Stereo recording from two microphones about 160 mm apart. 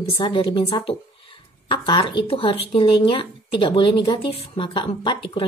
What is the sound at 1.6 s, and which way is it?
Speech, 30° left (ahead or behind).